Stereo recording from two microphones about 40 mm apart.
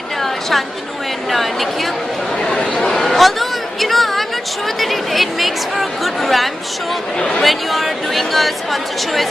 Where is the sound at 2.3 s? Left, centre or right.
Centre.